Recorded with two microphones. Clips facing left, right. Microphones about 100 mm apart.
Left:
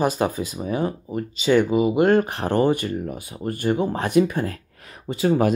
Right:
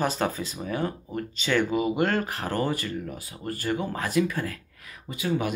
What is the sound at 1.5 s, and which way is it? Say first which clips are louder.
Speech: left 7 dB; 10° left (ahead or behind).